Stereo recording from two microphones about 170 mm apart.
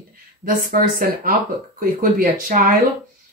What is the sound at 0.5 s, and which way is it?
Speech, 60° right (ahead or behind).